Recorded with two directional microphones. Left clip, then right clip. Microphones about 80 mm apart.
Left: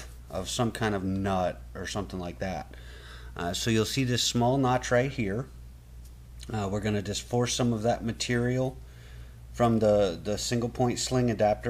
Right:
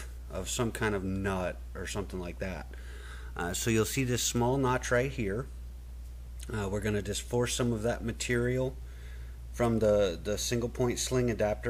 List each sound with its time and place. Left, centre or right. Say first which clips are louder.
0.0 s speech: left 4 dB; right